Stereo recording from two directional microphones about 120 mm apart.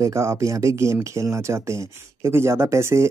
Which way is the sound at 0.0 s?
25° right (ahead or behind).